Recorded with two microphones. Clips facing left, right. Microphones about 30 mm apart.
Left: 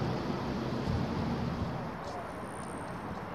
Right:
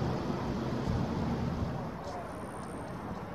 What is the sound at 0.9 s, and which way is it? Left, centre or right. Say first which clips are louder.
Vehicle: even; left.